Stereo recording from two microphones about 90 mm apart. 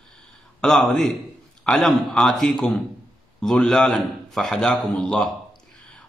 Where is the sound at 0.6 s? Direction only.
5° left (ahead or behind).